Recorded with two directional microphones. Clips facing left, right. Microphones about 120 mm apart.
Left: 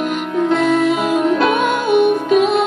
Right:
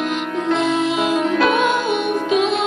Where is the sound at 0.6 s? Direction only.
50° left (ahead or behind).